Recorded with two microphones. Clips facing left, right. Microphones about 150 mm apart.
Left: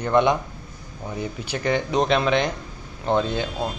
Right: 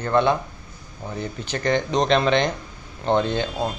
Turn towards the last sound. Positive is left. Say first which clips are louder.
# right 1 dB
turn(degrees=5)  # may be behind; listen again after turning